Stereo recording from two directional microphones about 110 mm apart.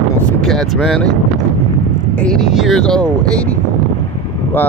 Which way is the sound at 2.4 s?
5° right (ahead or behind).